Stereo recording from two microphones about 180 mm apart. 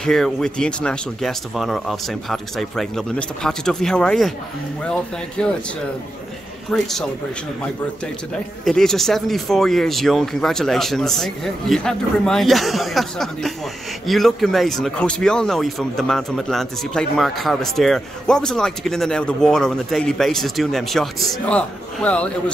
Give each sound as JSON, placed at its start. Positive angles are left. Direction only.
{"t": 0.0, "sound": "speech", "side_deg": 5}
{"t": 5.4, "sound": "speech", "side_deg": 5}
{"t": 6.7, "sound": "speech", "side_deg": 0}
{"t": 8.6, "sound": "speech", "side_deg": 0}